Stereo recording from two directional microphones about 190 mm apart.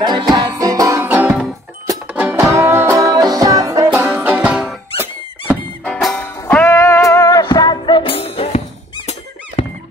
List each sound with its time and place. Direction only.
0.0 s music: 20° right (ahead or behind); by 9.1 s 35° left (ahead or behind)
9.6 s squeak: 30° left (ahead or behind)